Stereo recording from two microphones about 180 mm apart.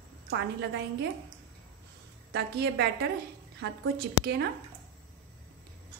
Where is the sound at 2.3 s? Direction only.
70° right (ahead or behind).